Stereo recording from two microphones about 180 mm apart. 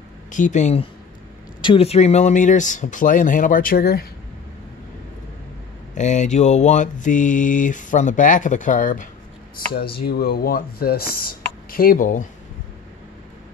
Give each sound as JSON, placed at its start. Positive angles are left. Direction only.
{"t": 0.3, "sound": "speech", "side_deg": 45}
{"t": 1.6, "sound": "mantra", "side_deg": 30}
{"t": 5.9, "sound": "mantra", "side_deg": 40}
{"t": 9.9, "sound": "speech", "side_deg": 60}